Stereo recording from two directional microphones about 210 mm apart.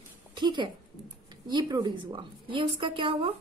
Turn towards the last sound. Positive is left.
turn(degrees=-25)  # may be behind; listen again after turning